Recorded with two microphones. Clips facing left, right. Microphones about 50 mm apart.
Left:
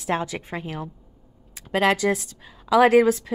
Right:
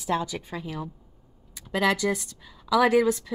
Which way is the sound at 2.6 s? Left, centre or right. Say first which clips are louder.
Left 5 dB; left.